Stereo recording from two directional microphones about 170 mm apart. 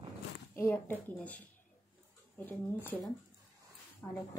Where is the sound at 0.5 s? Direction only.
15° left (ahead or behind).